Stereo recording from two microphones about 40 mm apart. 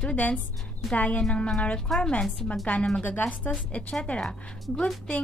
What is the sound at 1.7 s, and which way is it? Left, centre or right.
Speech, centre.